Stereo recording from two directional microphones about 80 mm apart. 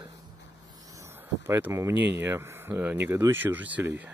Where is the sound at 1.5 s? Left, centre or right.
Right.